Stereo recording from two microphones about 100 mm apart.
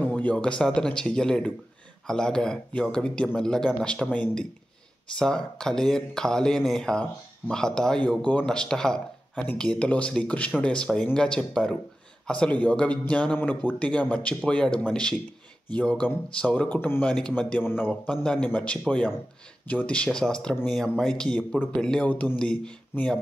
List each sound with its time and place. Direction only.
0.0 s speech: 15° left (ahead or behind)
18.1 s speech: 10° left (ahead or behind)